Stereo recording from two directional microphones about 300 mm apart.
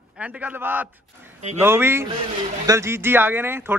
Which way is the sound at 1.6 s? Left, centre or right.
Centre.